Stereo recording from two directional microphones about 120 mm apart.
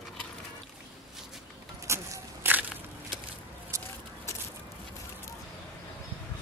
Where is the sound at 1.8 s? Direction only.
25° right (ahead or behind).